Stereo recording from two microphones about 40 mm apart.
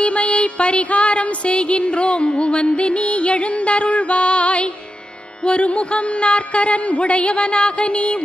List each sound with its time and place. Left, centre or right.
0.0 s music: left